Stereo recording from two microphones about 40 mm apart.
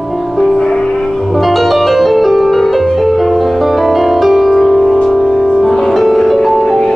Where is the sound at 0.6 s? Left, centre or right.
Centre.